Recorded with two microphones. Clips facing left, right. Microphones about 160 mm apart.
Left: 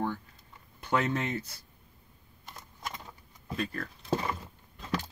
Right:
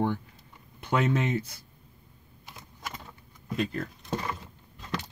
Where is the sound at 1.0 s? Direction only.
35° left (ahead or behind).